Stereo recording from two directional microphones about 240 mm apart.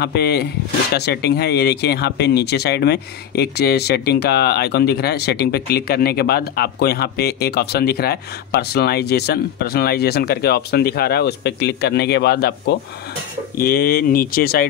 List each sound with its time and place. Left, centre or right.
0.0 s speech: left